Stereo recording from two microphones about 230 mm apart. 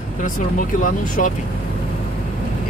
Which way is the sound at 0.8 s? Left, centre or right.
Left.